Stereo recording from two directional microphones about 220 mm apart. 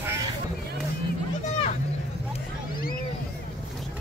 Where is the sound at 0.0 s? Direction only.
10° right (ahead or behind).